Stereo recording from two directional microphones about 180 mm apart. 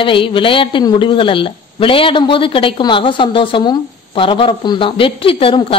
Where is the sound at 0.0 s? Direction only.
30° left (ahead or behind).